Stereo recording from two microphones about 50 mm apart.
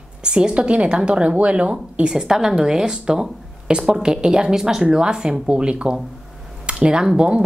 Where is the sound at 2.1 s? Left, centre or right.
Centre.